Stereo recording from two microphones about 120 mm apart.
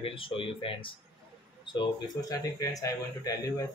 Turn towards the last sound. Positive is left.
turn(degrees=30)  # may be behind; listen again after turning